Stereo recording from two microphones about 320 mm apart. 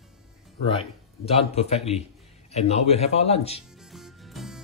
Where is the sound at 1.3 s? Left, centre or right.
Centre.